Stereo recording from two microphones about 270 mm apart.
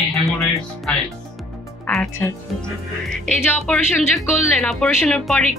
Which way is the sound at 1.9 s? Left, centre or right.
Centre.